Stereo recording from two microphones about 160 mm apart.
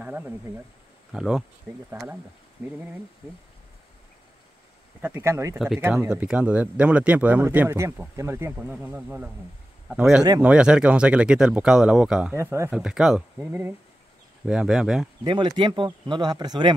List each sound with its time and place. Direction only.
0.0 s speech: 10° right (ahead or behind)
5.0 s speech: 15° right (ahead or behind)
5.6 s speech: centre (ahead or behind)
12.4 s speech: 15° right (ahead or behind)
12.7 s speech: 5° right (ahead or behind)
15.2 s speech: 30° right (ahead or behind)